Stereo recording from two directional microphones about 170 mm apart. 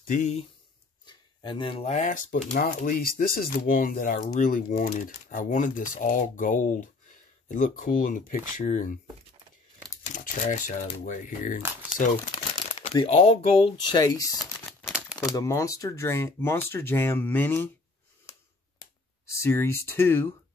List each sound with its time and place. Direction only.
0.0 s speech: 45° left (ahead or behind)
1.0 s a sound: 25° left (ahead or behind)
1.9 s speech: 45° left (ahead or behind)
10.0 s speech: 50° left (ahead or behind)
12.7 s speech: 35° left (ahead or behind); by 17.6 s 10° left (ahead or behind)
19.3 s speech: 15° left (ahead or behind)